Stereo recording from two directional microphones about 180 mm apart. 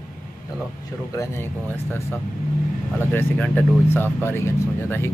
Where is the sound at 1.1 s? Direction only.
15° left (ahead or behind).